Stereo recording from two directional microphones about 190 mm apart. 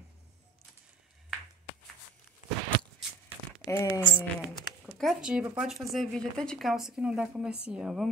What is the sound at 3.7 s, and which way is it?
Speech, 15° left (ahead or behind).